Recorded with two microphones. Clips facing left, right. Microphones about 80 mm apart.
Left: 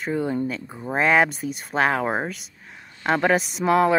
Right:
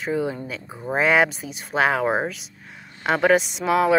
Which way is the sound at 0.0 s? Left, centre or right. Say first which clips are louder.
Left 1 dB; centre.